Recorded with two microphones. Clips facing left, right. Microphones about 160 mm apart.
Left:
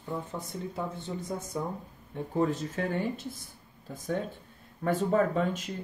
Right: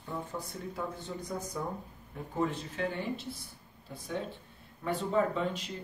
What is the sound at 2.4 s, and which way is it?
Speech, 40° left (ahead or behind).